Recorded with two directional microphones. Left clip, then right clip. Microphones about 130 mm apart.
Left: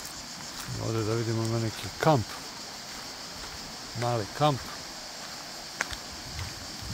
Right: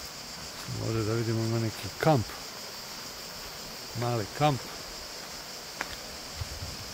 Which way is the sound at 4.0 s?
25° right (ahead or behind).